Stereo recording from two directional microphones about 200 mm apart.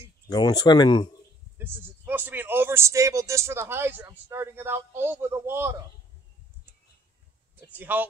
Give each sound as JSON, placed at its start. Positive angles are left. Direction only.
{"t": 0.3, "sound": "speech", "side_deg": 20}
{"t": 1.6, "sound": "speech", "side_deg": -10}
{"t": 7.7, "sound": "speech", "side_deg": -10}